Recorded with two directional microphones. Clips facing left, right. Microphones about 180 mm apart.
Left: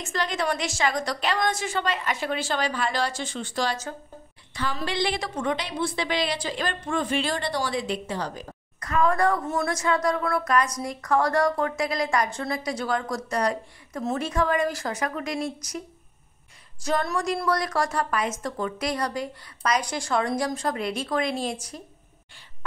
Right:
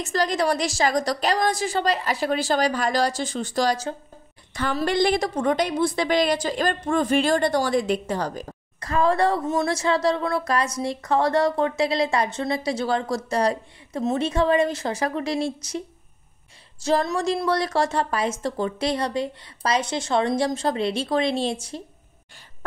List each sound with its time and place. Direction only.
0.0 s a woman's voice: 40° right (ahead or behind)
8.7 s speech: 30° right (ahead or behind)
16.8 s speech: 25° right (ahead or behind)